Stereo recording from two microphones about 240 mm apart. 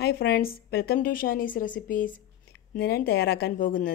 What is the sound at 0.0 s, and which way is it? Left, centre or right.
A woman's voice, left.